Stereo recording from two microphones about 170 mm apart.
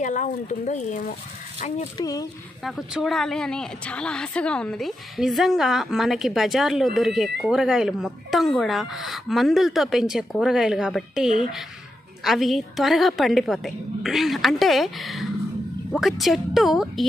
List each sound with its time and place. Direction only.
0.0 s speech: 45° left (ahead or behind)
2.0 s speech: 20° left (ahead or behind)
2.6 s a woman's voice: centre (ahead or behind)